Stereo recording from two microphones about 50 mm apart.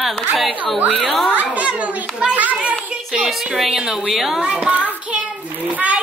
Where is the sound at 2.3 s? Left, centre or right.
Right.